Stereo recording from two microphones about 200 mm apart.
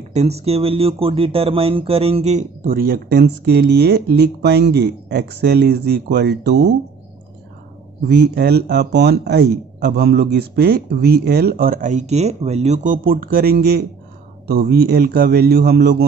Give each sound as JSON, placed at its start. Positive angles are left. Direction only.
{"t": 0.1, "sound": "speech", "side_deg": -35}
{"t": 8.1, "sound": "speech", "side_deg": -55}